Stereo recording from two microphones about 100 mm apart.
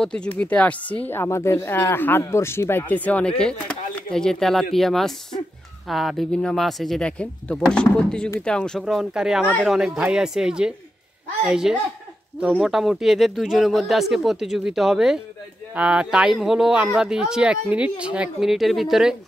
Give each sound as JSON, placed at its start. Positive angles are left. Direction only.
{"t": 0.0, "sound": "speech", "side_deg": 10}
{"t": 8.8, "sound": "speech", "side_deg": -5}
{"t": 12.4, "sound": "speech", "side_deg": -10}